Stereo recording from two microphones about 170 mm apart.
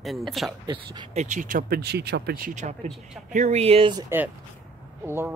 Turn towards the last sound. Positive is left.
turn(degrees=-15)  # may be behind; listen again after turning